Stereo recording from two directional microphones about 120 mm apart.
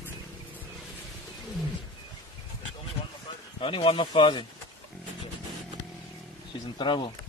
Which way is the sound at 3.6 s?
45° left (ahead or behind).